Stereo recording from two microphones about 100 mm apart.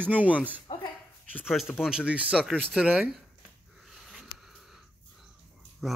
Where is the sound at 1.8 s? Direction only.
10° right (ahead or behind).